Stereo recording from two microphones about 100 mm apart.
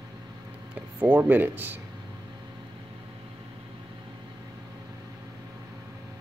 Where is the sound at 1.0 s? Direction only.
20° right (ahead or behind).